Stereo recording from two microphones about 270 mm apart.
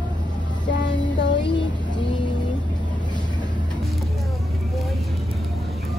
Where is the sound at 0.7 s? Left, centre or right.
Left.